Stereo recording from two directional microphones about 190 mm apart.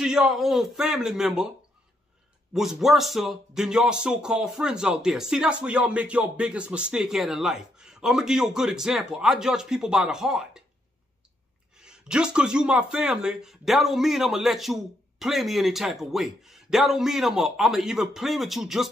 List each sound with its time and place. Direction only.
0.0 s speech: 5° right (ahead or behind)
2.5 s speech: centre (ahead or behind)
11.7 s speech: 5° right (ahead or behind)